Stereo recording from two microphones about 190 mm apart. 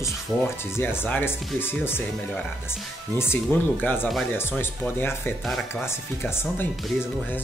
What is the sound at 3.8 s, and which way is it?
Speech, 10° left (ahead or behind).